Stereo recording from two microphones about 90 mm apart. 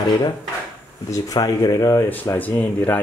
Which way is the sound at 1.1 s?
45° left (ahead or behind).